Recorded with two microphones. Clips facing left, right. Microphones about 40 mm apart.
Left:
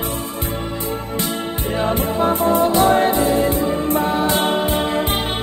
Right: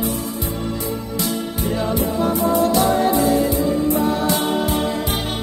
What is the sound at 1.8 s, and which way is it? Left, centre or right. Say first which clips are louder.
Music: left 3 dB; left.